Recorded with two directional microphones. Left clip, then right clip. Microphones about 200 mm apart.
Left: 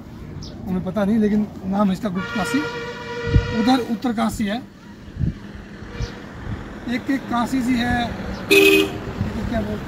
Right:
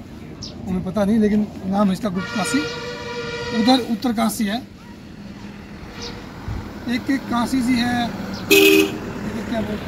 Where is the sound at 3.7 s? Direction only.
Centre (ahead or behind).